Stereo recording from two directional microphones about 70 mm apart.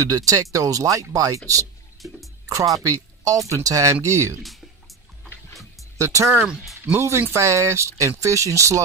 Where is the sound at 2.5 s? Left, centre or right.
Right.